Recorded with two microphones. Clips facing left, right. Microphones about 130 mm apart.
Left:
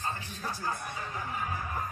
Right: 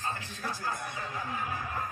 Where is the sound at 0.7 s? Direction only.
15° right (ahead or behind).